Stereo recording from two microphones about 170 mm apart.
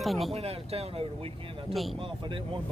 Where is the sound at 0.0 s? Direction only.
Centre (ahead or behind).